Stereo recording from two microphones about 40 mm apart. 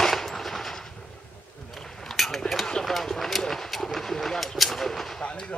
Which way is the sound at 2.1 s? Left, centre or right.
Centre.